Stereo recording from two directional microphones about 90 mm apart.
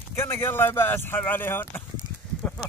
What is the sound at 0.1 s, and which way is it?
Speech, 25° left (ahead or behind).